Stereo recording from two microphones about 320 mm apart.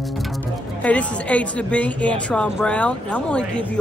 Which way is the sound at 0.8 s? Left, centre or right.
Centre.